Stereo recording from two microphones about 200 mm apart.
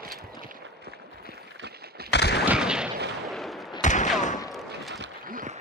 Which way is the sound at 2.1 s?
55° left (ahead or behind).